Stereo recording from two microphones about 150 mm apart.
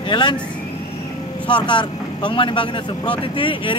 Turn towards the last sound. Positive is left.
turn(degrees=35)  # may be behind; listen again after turning